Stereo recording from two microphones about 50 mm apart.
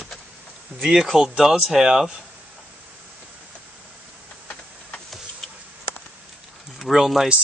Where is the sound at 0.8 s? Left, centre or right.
Centre.